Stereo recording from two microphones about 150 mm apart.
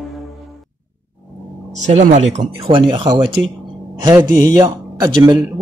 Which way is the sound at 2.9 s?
35° right (ahead or behind).